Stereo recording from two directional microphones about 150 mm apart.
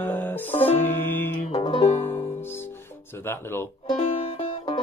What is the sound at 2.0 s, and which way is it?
Music, 15° left (ahead or behind).